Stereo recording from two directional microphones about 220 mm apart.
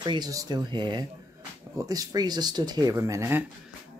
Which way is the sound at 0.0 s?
20° right (ahead or behind).